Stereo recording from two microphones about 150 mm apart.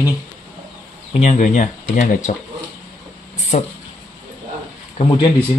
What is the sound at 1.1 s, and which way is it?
Speech, 55° left (ahead or behind).